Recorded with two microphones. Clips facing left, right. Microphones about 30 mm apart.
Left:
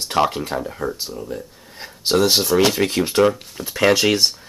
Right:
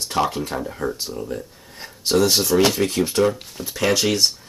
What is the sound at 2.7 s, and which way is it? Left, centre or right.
Speech, left.